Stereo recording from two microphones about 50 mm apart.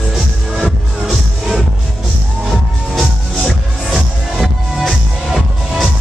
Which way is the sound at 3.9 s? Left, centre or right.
Centre.